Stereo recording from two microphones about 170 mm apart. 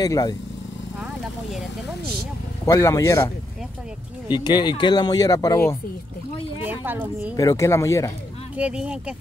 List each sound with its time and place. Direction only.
0.0 s speech: 20° left (ahead or behind)
2.6 s speech: 15° left (ahead or behind)
4.3 s speech: 25° left (ahead or behind)
6.6 s speech: 10° right (ahead or behind)
7.3 s speech: 20° left (ahead or behind)
8.5 s speech: 5° right (ahead or behind)